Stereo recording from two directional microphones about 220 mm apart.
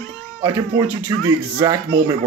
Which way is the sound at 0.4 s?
15° right (ahead or behind).